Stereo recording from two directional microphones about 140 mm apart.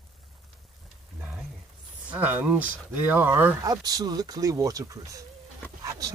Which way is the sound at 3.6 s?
25° right (ahead or behind).